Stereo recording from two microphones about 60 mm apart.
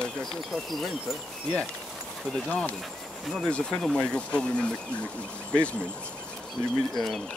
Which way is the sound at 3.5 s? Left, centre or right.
Centre.